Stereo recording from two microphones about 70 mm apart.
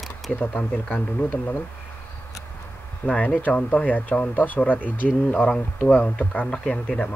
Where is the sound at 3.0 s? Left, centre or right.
Centre.